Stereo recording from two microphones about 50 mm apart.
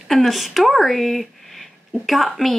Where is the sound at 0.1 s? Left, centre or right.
Centre.